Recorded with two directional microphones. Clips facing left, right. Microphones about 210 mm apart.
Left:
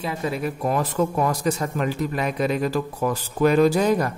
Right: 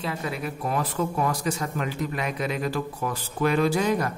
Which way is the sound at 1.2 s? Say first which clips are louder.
Left 4 dB; 40° left (ahead or behind).